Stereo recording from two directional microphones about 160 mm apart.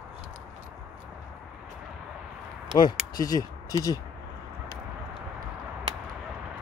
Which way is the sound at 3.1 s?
25° left (ahead or behind).